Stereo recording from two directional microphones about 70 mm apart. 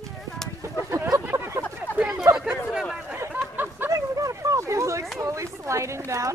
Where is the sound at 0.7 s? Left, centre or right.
Right.